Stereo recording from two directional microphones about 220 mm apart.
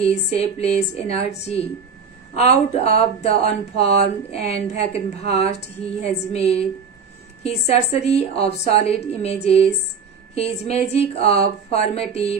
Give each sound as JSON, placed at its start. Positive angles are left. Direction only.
{"t": 0.0, "sound": "speech", "side_deg": 25}